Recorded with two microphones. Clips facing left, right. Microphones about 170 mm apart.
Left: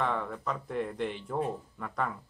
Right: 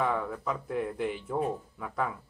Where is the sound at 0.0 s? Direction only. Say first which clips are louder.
Right 2 dB; 5° right (ahead or behind).